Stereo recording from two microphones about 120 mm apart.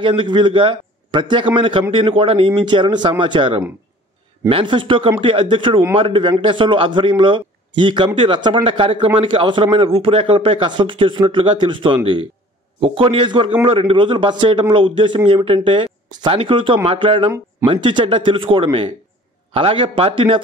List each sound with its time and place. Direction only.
0.0 s a man's voice: 45° right (ahead or behind)